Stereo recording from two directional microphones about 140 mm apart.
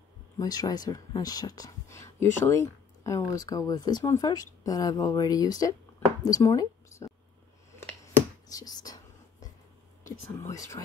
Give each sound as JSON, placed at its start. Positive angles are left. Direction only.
{"t": 0.4, "sound": "speech", "side_deg": 25}
{"t": 5.9, "sound": "a sound", "side_deg": 25}
{"t": 8.5, "sound": "whispering", "side_deg": 25}
{"t": 10.5, "sound": "speech", "side_deg": 25}